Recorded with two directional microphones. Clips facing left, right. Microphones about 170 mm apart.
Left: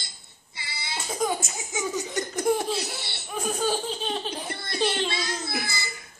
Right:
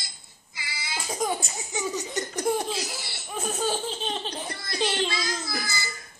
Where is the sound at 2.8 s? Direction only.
25° left (ahead or behind).